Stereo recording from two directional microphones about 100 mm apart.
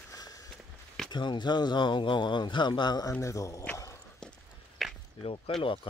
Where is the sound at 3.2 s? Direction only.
30° left (ahead or behind).